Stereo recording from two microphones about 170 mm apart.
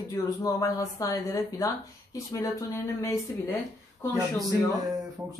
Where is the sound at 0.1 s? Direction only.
20° left (ahead or behind).